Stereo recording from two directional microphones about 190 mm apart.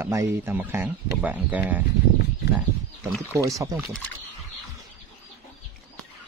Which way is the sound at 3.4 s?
15° right (ahead or behind).